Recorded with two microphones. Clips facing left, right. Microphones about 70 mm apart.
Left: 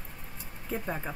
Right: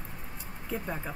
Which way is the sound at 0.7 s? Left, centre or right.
Centre.